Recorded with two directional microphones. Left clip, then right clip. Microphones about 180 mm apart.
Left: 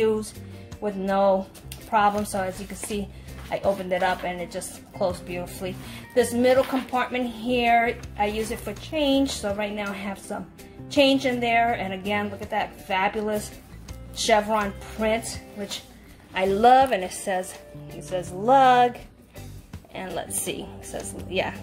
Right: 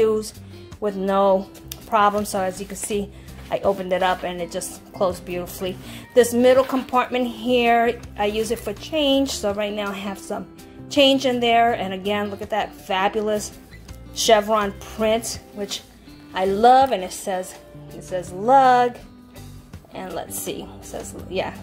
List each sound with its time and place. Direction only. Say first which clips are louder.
0.7 s speech: right 3 dB; 35° right (ahead or behind)
16.3 s a woman's voice: right 2 dB; 15° right (ahead or behind)